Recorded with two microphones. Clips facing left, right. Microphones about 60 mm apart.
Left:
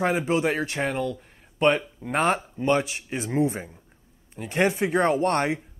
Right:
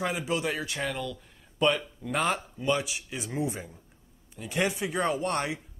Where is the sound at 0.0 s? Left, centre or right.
Left.